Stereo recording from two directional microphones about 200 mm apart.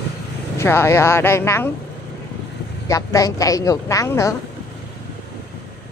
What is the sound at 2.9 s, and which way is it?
A woman's voice, 15° left (ahead or behind).